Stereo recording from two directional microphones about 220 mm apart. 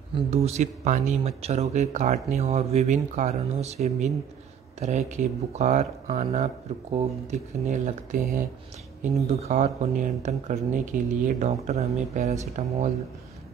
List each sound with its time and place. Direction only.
0.1 s speech: 30° right (ahead or behind)